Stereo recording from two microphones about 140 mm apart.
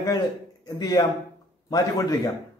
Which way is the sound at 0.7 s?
25° left (ahead or behind).